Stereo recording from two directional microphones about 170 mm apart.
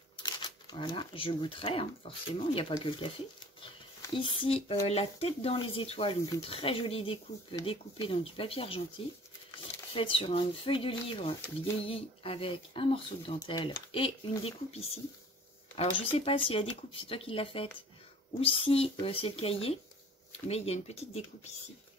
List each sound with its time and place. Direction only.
0.2 s speech: 25° left (ahead or behind)
3.6 s a sound: 30° left (ahead or behind)
4.8 s speech: 35° left (ahead or behind)
9.9 s speech: 30° left (ahead or behind)